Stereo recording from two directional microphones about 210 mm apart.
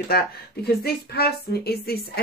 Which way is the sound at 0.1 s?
50° left (ahead or behind).